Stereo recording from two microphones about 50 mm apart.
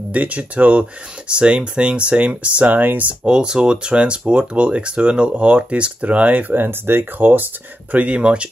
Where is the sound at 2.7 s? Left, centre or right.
Right.